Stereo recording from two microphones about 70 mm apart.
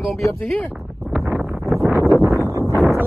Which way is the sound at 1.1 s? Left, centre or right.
Centre.